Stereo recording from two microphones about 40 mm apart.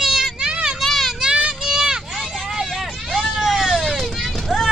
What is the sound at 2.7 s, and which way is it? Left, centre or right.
Vehicle, centre.